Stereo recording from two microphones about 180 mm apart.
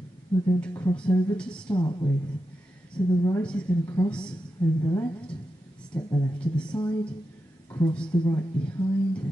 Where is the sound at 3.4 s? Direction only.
5° left (ahead or behind).